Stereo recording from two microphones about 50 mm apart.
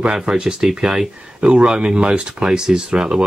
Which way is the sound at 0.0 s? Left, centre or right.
Centre.